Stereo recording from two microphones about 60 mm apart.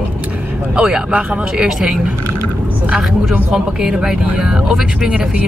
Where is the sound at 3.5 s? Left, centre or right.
Centre.